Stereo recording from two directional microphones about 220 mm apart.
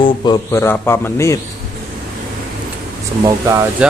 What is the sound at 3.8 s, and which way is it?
Speech, 5° right (ahead or behind).